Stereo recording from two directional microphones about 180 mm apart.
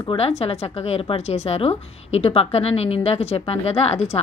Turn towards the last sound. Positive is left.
turn(degrees=35)  # may be behind; listen again after turning